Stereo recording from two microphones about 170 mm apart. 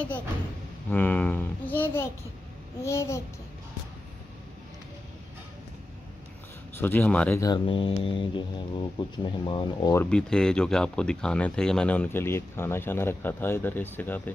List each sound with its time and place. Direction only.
0.8 s speech: 10° left (ahead or behind)
6.8 s speech: 10° left (ahead or behind)
7.3 s speech: 25° left (ahead or behind)
9.9 s speech: 5° left (ahead or behind)